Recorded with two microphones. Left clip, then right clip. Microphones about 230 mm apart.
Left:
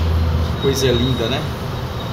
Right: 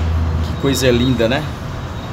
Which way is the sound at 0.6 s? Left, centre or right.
Right.